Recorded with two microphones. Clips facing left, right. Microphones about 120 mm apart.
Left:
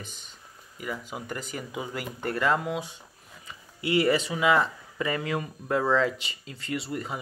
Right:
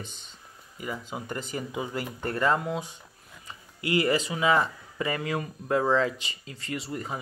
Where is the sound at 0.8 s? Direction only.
20° right (ahead or behind).